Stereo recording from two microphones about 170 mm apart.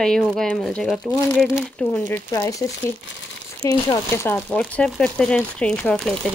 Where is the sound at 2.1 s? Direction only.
20° left (ahead or behind).